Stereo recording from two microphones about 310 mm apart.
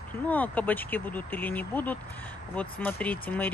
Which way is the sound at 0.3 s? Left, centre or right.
Centre.